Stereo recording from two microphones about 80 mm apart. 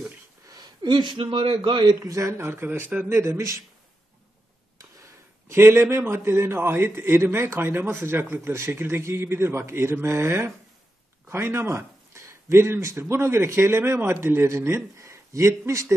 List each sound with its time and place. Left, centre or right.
0.8 s a man's voice: right
2.0 s speech: right
3.1 s speech: right
4.7 s speech: right